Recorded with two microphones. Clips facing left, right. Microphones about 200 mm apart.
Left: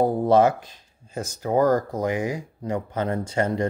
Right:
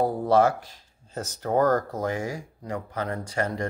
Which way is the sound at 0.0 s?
20° left (ahead or behind).